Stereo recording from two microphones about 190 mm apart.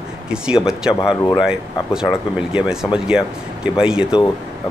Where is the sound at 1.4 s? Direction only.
5° right (ahead or behind).